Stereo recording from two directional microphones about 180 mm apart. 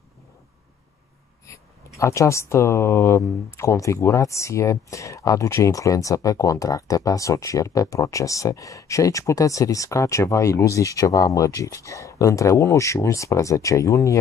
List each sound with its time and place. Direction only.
2.0 s speech: 15° left (ahead or behind)